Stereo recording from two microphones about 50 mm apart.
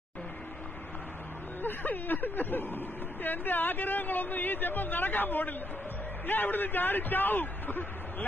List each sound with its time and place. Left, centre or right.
1.6 s speech: left